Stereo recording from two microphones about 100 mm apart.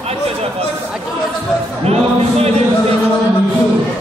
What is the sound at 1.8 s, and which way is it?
Speech, 90° right.